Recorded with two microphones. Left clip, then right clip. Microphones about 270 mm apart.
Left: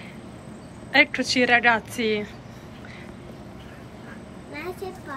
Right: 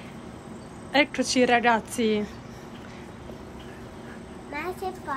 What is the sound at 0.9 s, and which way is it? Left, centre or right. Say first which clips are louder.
A woman's voice: left 3 dB; centre.